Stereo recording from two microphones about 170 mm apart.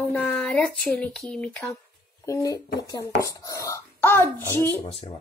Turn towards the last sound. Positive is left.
turn(degrees=15)  # may be behind; listen again after turning